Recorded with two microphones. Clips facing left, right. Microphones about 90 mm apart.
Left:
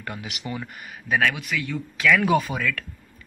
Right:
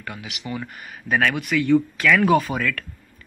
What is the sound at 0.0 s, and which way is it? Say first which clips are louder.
Speech: left 1 dB; 25° left (ahead or behind).